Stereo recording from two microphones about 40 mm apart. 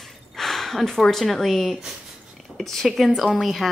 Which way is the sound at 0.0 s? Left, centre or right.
Centre.